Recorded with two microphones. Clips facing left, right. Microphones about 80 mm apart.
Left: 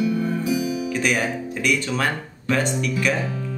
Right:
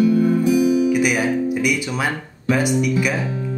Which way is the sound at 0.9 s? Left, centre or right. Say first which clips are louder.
Right 5 dB; centre.